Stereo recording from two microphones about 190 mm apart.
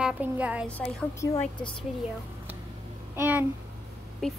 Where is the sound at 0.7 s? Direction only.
10° left (ahead or behind).